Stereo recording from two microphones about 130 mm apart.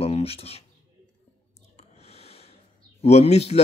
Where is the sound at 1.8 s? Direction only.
55° left (ahead or behind).